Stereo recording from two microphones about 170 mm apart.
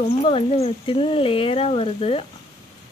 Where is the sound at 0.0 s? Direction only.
35° left (ahead or behind).